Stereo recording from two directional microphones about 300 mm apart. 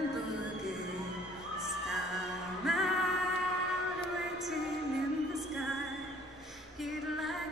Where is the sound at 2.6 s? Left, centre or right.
Centre.